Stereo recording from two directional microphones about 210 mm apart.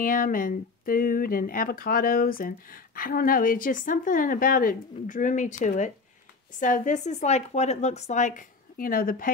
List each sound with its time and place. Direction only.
0.0 s speech: 40° left (ahead or behind)